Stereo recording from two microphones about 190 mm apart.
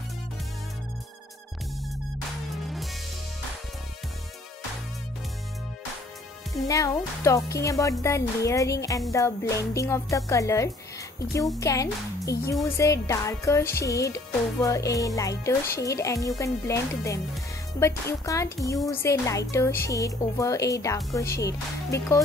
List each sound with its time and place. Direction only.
2.6 s music: centre (ahead or behind)
6.7 s a woman's voice: 15° left (ahead or behind)